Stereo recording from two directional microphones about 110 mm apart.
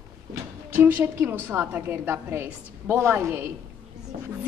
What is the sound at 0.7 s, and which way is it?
A woman's voice, 20° right (ahead or behind).